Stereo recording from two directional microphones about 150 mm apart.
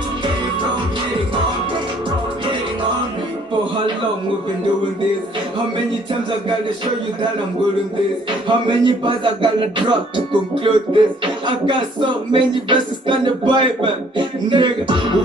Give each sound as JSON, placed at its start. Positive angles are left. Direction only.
{"t": 8.5, "sound": "speech", "side_deg": -35}